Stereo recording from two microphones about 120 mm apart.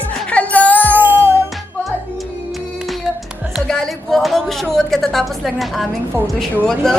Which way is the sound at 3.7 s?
5° left (ahead or behind).